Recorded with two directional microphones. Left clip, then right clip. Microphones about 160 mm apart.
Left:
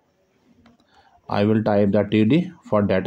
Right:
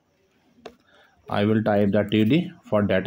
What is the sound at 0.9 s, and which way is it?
Speech, 25° left (ahead or behind).